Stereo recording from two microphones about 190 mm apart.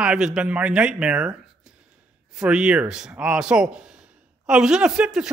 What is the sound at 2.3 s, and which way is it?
A woman's voice, 5° right (ahead or behind).